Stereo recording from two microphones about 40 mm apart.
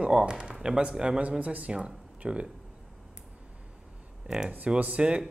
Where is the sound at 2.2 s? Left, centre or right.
Right.